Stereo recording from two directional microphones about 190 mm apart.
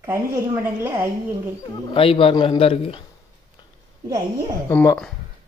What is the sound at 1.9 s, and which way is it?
A man's voice, 30° left (ahead or behind).